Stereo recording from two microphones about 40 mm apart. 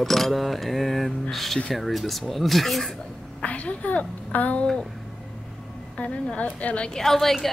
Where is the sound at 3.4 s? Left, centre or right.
Left.